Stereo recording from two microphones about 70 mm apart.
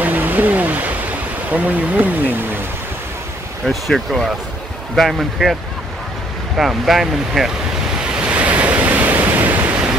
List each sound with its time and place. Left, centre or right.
0.0 s a sound: right
1.5 s speech: right
3.6 s speech: centre
8.1 s waves: centre